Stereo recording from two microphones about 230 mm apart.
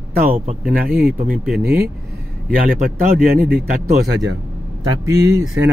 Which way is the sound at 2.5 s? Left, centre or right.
Right.